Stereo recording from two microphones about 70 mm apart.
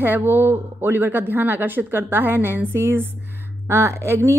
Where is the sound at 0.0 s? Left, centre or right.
Right.